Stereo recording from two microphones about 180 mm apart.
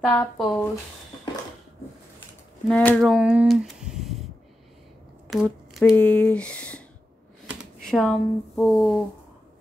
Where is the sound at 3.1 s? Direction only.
5° right (ahead or behind).